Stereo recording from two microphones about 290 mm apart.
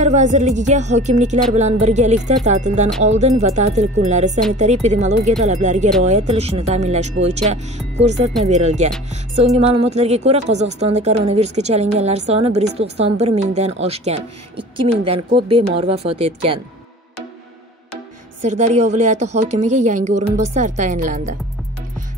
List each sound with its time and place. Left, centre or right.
0.0 s speech: right
18.4 s speech: right